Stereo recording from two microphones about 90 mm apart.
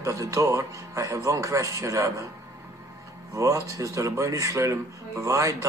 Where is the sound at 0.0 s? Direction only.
35° right (ahead or behind).